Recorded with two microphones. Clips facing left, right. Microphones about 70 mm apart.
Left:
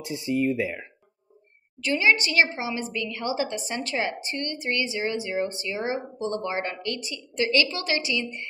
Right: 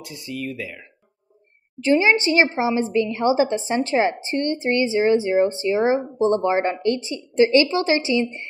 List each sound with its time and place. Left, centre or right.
0.0 s speech: left
1.8 s a woman's voice: right